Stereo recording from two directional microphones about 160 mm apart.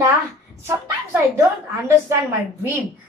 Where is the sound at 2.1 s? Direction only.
15° right (ahead or behind).